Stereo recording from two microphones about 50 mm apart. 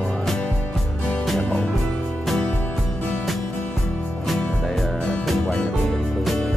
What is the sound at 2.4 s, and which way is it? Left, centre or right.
Music, left.